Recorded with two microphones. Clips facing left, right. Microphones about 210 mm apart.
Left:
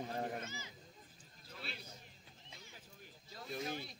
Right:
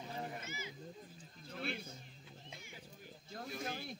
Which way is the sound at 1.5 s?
50° right (ahead or behind).